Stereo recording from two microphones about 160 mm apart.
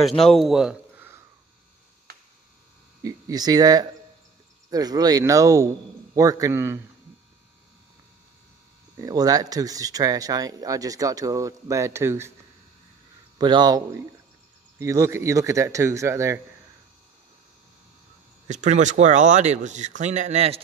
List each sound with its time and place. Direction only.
0.2 s a man's voice: centre (ahead or behind)
3.0 s speech: 20° right (ahead or behind)
8.9 s speech: 20° right (ahead or behind)
13.4 s speech: 25° right (ahead or behind)
18.5 s speech: 50° right (ahead or behind)